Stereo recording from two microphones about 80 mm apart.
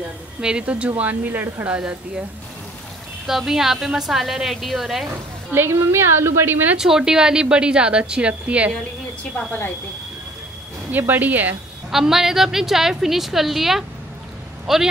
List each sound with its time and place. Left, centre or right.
0.4 s a woman's voice: centre
1.8 s a woman's voice: centre
3.3 s a woman's voice: centre
5.5 s a woman's voice: right
6.8 s a woman's voice: centre
10.9 s speech: right
11.9 s a woman's voice: centre